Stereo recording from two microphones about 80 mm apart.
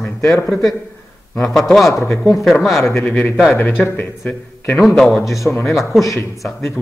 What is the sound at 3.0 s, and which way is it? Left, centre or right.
Speech, left.